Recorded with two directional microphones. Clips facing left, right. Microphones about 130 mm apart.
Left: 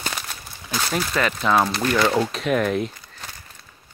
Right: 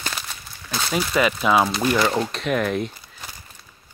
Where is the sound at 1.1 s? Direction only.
10° right (ahead or behind).